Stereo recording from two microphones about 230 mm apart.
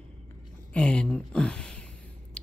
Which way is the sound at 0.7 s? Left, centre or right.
Centre.